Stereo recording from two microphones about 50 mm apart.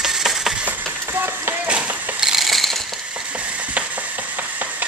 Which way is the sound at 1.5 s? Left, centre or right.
Right.